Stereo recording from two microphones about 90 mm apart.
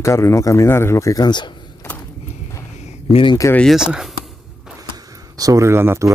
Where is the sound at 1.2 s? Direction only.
55° left (ahead or behind).